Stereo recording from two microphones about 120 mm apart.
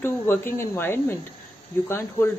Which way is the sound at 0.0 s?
20° left (ahead or behind).